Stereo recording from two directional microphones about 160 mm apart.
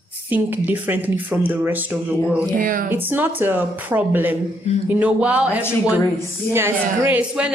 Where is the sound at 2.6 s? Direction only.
60° right (ahead or behind).